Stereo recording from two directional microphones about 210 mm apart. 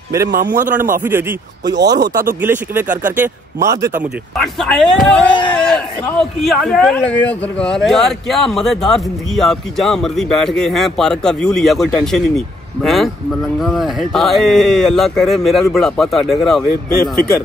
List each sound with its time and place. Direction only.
0.3 s a man's voice: 40° right (ahead or behind)
1.7 s speech: 55° right (ahead or behind)
2.4 s speech: 10° right (ahead or behind)
4.0 s speech: centre (ahead or behind)